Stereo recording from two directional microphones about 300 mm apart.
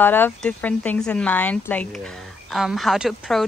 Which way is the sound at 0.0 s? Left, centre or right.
Centre.